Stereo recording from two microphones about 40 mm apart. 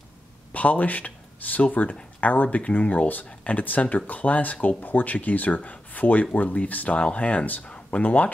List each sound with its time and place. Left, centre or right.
0.5 s speech: left